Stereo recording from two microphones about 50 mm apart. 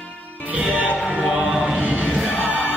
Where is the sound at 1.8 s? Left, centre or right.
Right.